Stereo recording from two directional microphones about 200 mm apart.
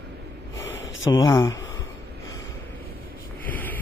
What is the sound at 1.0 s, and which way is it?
Speech, 15° left (ahead or behind).